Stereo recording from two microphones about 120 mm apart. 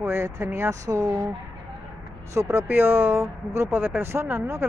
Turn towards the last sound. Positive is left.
turn(degrees=-20)  # may be behind; listen again after turning